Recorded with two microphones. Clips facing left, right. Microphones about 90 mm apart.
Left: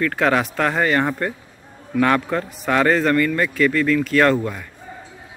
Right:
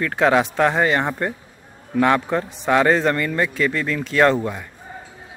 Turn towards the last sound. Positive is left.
turn(degrees=-20)  # may be behind; listen again after turning